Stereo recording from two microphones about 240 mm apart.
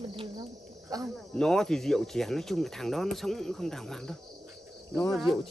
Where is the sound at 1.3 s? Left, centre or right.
Centre.